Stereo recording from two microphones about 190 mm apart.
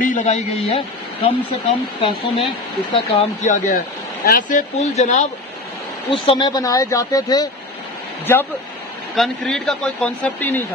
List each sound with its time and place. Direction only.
0.0 s a man's voice: 40° left (ahead or behind)
3.7 s speech: 50° left (ahead or behind)
6.1 s speech: 25° left (ahead or behind)
9.1 s speech: centre (ahead or behind)